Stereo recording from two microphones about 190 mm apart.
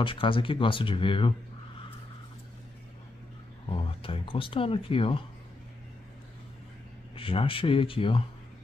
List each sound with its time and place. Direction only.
0.0 s speech: 25° left (ahead or behind)
3.7 s speech: 30° left (ahead or behind)
7.2 s speech: 30° left (ahead or behind)